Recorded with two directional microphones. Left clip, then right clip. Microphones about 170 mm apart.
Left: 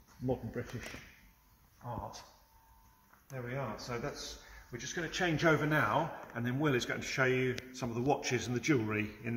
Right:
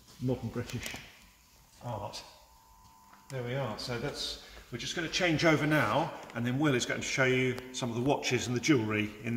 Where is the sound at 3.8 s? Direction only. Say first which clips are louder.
Right 4 dB; 5° right (ahead or behind).